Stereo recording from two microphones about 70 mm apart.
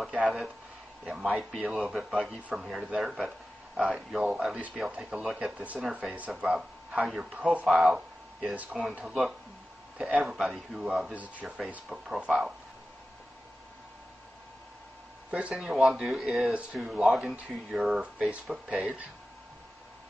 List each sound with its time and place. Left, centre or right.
0.1 s a man's voice: centre
7.6 s speech: centre
7.9 s a sound: centre
8.9 s speech: centre
10.2 s speech: centre
15.5 s speech: centre